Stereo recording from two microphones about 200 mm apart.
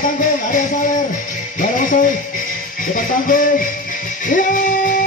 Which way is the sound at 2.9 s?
45° left (ahead or behind).